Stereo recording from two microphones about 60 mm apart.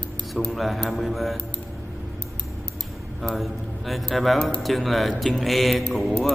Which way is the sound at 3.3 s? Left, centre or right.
Centre.